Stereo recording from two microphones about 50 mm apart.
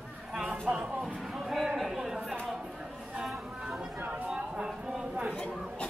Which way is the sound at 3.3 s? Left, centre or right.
Centre.